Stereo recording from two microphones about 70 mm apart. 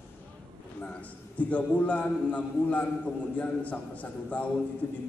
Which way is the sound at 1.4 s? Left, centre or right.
Left.